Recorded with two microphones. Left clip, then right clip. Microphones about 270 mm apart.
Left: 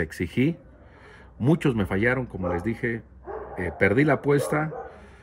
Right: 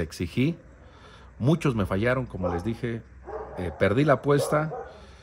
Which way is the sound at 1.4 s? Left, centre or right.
Centre.